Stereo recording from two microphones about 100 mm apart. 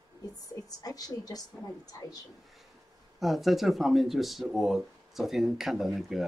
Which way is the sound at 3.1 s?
Centre (ahead or behind).